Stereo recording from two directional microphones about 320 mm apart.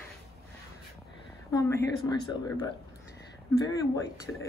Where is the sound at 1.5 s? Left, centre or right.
Centre.